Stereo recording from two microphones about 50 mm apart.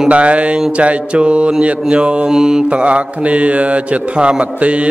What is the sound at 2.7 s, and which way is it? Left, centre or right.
Mantra, right.